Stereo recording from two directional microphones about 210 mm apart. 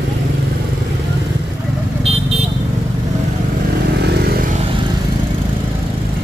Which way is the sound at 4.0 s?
50° right (ahead or behind).